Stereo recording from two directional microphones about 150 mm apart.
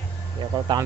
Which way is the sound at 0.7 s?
35° right (ahead or behind).